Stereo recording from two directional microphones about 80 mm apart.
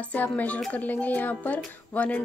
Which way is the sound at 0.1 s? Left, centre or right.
Left.